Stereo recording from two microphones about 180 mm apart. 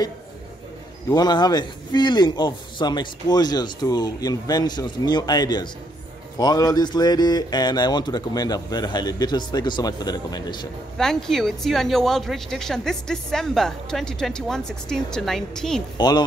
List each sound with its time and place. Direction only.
1.1 s a man's voice: 20° left (ahead or behind)
11.0 s a woman's voice: centre (ahead or behind)
16.0 s a man's voice: 25° left (ahead or behind)